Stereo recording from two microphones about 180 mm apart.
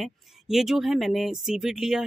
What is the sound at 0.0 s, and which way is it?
Speech, centre (ahead or behind).